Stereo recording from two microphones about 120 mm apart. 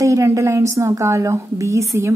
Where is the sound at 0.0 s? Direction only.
25° right (ahead or behind).